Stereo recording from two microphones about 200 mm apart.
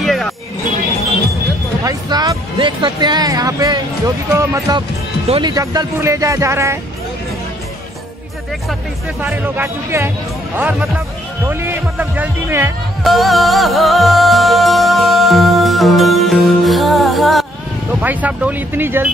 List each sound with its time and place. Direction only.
0.0 s music: centre (ahead or behind)
1.9 s speech: 20° right (ahead or behind)
9.2 s speech: 10° right (ahead or behind)
13.0 s music: centre (ahead or behind)
18.0 s speech: 10° right (ahead or behind)